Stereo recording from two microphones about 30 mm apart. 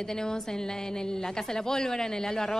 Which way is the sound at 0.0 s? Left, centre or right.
Left.